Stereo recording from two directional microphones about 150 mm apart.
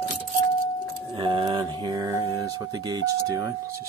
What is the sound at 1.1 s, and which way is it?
Speech, 30° right (ahead or behind).